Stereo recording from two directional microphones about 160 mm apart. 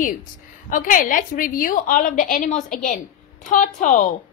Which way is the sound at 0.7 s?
55° left (ahead or behind).